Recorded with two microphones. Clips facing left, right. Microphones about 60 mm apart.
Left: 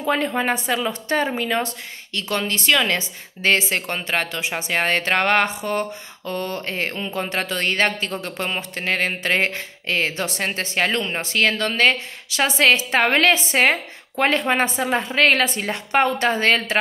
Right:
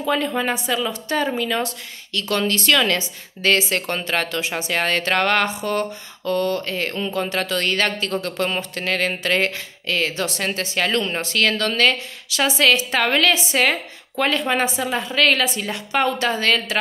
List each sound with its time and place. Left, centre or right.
0.0 s a woman's voice: left
2.1 s a woman's voice: left
3.0 s a woman's voice: left
10.9 s a woman's voice: centre